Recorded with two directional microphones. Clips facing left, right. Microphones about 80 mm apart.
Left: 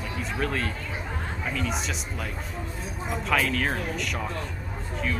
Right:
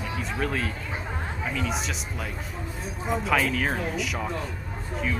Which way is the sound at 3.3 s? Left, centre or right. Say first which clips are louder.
Left 1 dB; centre.